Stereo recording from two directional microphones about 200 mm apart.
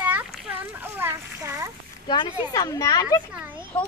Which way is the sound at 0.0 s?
5° right (ahead or behind).